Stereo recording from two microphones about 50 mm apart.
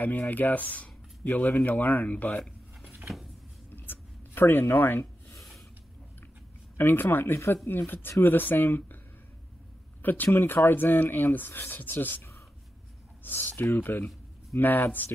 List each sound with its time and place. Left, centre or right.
0.0 s speech: left
3.7 s writing: left
6.8 s speech: left
10.0 s speech: left
12.2 s a sound: left
13.2 s speech: left